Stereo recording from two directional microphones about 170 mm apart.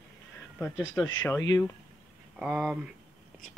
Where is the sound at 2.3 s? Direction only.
5° right (ahead or behind).